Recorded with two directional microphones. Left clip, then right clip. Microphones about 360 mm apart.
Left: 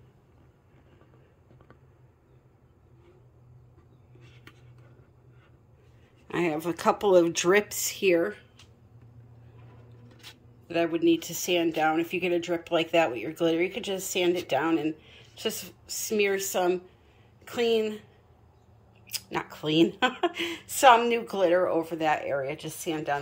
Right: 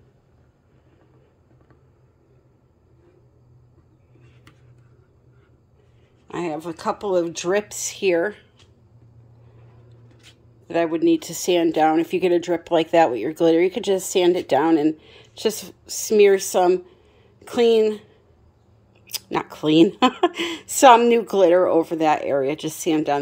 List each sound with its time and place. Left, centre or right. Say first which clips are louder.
6.2 s speech: right 1 dB; centre
10.7 s speech: right 5 dB; centre
19.0 s a sound: right 7 dB; centre
19.5 s speech: right 8 dB; centre